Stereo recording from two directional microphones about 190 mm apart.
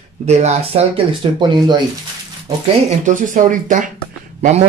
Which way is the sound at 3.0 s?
45° right (ahead or behind).